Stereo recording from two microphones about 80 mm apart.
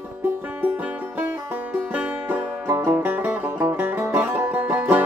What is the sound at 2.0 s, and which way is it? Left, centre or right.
Music, right.